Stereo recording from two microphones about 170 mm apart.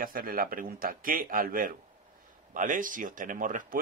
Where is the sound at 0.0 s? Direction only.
55° right (ahead or behind).